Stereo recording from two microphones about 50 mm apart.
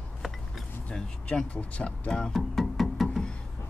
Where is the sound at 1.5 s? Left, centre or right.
Left.